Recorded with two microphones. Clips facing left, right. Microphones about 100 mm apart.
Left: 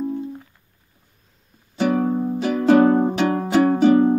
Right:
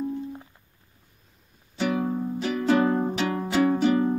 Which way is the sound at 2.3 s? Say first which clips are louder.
Left 8 dB; 45° left (ahead or behind).